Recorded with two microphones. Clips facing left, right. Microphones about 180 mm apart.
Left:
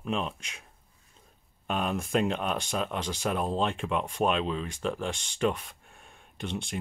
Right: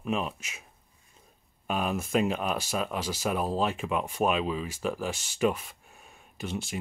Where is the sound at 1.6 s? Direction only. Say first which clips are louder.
Even; 5° right (ahead or behind).